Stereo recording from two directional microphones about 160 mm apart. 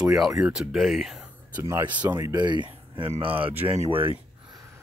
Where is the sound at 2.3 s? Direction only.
30° right (ahead or behind).